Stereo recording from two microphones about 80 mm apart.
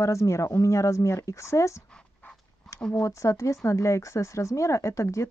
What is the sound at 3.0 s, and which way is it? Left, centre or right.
Speech, left.